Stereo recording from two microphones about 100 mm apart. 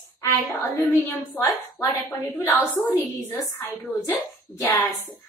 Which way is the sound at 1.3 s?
20° left (ahead or behind).